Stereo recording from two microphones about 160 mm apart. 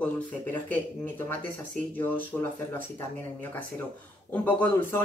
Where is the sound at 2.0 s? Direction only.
15° left (ahead or behind).